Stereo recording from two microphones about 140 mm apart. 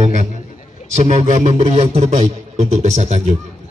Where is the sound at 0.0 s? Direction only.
55° right (ahead or behind).